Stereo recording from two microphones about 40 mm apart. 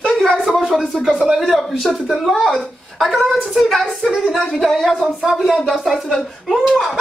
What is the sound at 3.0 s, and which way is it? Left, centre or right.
A woman's voice, centre.